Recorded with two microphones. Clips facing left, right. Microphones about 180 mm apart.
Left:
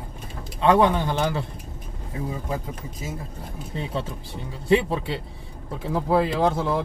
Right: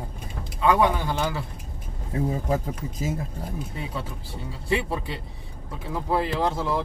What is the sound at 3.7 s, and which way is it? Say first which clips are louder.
Speech: left 4 dB; 25° left (ahead or behind).